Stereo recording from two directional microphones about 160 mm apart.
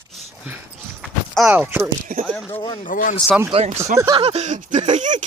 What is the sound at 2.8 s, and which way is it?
Speech, 55° left (ahead or behind).